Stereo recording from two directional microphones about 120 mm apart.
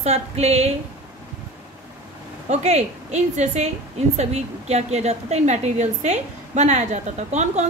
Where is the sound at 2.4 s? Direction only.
70° right (ahead or behind).